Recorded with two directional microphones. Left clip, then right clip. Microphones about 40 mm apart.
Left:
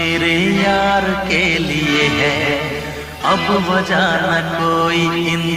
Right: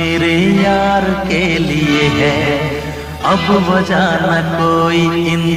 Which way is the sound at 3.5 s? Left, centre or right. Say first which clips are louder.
Right 2 dB; left.